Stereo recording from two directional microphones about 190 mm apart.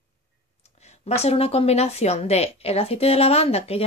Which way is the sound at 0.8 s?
35° left (ahead or behind).